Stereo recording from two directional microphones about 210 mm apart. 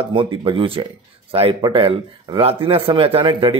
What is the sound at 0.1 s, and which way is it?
Speech, 25° right (ahead or behind).